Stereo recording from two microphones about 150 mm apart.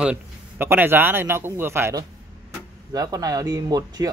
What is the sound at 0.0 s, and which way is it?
A man's voice, 10° right (ahead or behind).